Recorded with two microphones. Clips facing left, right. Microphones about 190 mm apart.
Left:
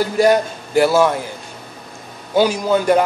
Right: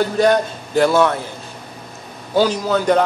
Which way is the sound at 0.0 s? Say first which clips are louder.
Left 1 dB; 10° left (ahead or behind).